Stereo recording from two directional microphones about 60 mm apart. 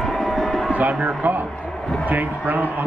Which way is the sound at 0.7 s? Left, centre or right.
Right.